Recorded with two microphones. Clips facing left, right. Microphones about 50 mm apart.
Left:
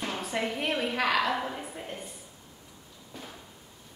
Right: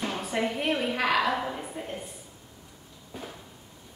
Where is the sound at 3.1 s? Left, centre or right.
Centre.